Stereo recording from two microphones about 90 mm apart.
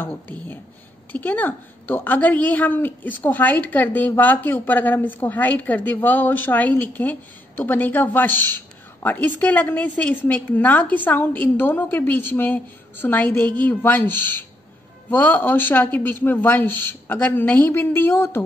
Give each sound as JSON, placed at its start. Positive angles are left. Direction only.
{"t": 0.0, "sound": "a woman's voice", "side_deg": 25}